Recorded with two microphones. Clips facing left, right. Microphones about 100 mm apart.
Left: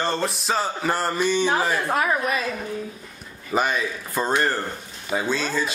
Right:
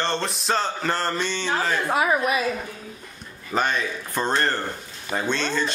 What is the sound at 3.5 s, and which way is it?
A man's voice, 5° left (ahead or behind).